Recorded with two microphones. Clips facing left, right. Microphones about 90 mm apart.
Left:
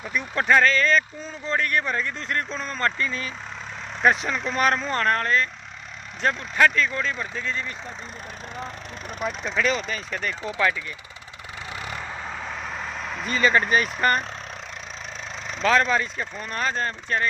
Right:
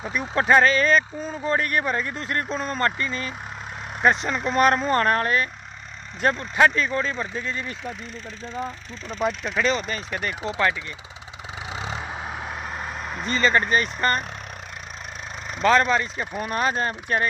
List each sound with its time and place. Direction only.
0.2 s speech: 20° right (ahead or behind)
9.4 s speech: 5° right (ahead or behind)
10.4 s speech: 20° right (ahead or behind)
11.7 s vehicle: 20° right (ahead or behind)
13.3 s speech: 5° left (ahead or behind)
15.6 s speech: 5° right (ahead or behind)